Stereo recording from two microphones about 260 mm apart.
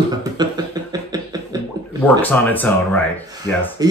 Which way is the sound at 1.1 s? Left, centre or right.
Centre.